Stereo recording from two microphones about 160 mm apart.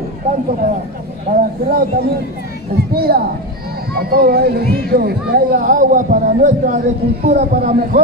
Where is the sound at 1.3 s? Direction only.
65° right (ahead or behind).